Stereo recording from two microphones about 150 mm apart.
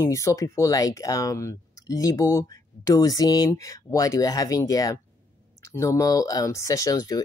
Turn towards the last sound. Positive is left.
turn(degrees=25)  # may be behind; listen again after turning